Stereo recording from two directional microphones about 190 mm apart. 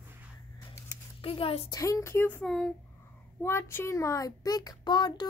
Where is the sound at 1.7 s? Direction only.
15° left (ahead or behind).